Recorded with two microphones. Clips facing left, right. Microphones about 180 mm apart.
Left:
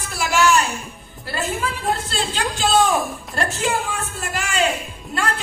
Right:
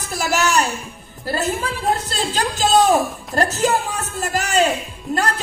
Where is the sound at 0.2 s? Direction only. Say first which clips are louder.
Left 1 dB; 40° right (ahead or behind).